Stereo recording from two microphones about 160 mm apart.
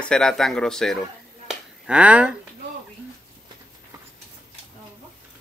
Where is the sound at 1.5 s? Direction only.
5° right (ahead or behind).